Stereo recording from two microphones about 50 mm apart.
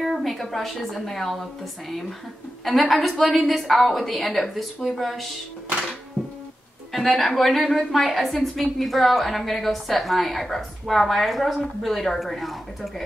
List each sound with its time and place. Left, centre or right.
0.2 s a woman's voice: centre
6.2 s music: right
6.9 s a woman's voice: centre